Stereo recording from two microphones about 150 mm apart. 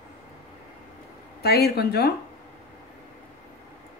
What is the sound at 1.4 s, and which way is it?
Speech, 90° left.